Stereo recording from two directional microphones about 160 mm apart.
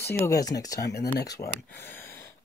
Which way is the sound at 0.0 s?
15° left (ahead or behind).